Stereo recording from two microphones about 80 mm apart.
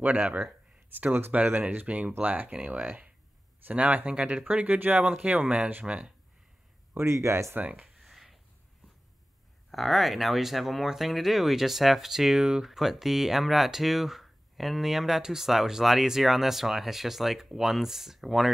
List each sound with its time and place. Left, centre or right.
0.0 s speech: centre
6.9 s speech: right
7.5 s speech: right
7.8 s a sound: centre
9.7 s speech: centre